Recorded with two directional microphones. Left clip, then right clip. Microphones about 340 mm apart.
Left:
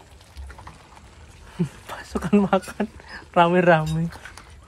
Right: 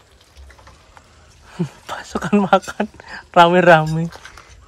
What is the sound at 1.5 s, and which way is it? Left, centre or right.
Speech, right.